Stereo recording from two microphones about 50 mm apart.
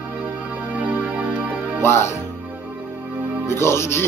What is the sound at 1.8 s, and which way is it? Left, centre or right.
Speech, left.